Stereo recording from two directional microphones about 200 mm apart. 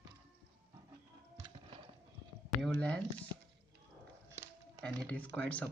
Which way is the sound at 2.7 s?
5° left (ahead or behind).